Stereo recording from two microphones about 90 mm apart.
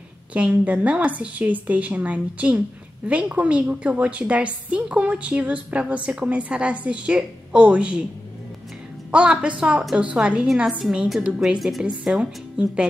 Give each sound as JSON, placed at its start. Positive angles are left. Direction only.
{"t": 0.3, "sound": "a woman's voice", "side_deg": -15}
{"t": 9.1, "sound": "a woman's voice", "side_deg": -10}